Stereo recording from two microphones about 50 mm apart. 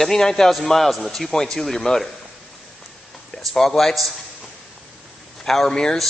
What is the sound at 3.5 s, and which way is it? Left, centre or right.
Speech, centre.